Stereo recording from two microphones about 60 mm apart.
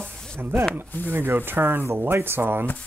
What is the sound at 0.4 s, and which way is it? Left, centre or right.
Speech, right.